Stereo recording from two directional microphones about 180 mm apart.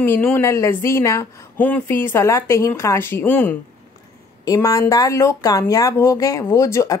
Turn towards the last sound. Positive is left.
turn(degrees=15)  # may be behind; listen again after turning